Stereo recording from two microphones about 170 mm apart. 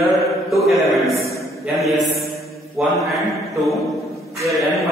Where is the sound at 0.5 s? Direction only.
Centre (ahead or behind).